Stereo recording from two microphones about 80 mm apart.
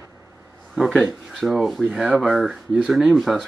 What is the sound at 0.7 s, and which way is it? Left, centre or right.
Speech, centre.